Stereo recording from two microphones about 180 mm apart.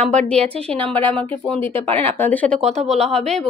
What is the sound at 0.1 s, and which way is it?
Speech, 5° left (ahead or behind).